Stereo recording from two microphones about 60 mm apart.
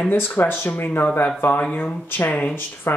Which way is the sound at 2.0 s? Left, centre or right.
Left.